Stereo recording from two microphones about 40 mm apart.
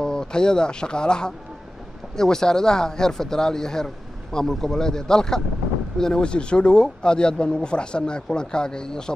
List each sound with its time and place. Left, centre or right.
0.0 s speech: centre